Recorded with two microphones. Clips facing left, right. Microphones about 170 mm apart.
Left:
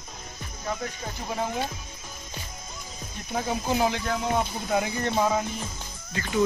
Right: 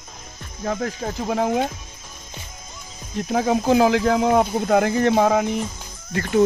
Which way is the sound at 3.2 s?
90° right.